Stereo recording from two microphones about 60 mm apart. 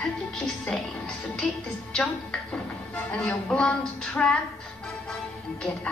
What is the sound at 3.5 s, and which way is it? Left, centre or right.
Speech, centre.